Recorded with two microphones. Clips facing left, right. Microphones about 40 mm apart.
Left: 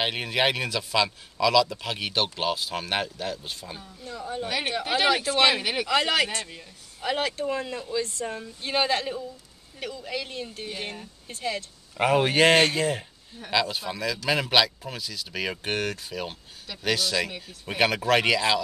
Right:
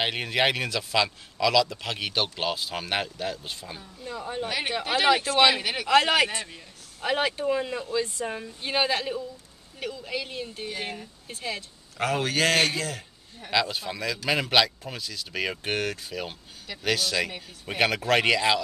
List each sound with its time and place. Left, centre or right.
0.0 s speech: centre
4.0 s speech: centre
4.5 s speech: centre
5.9 s a man's voice: centre
12.0 s a man's voice: centre
13.4 s speech: centre